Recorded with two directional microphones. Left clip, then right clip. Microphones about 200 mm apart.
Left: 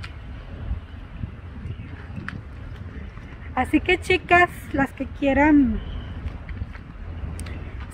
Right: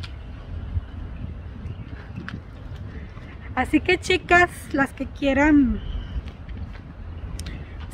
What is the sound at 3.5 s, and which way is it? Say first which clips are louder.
Speech: even; 10° right (ahead or behind).